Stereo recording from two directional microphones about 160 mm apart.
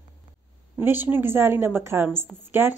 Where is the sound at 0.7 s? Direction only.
10° right (ahead or behind).